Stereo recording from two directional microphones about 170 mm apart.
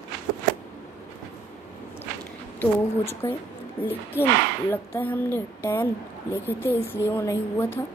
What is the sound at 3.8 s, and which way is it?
Speech, 10° left (ahead or behind).